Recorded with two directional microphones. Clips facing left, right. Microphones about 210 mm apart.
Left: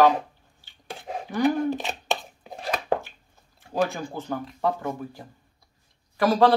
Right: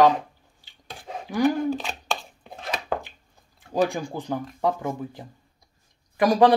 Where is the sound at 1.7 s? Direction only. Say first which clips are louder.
Left 1 dB; 20° left (ahead or behind).